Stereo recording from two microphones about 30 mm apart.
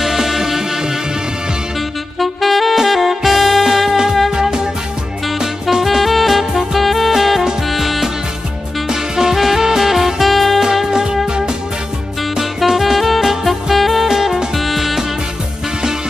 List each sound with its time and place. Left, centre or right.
0.0 s music: centre
2.1 s saxophone: centre
3.2 s music: centre
4.3 s music: right
5.4 s music: centre
8.8 s music: centre
10.9 s music: right
12.4 s music: centre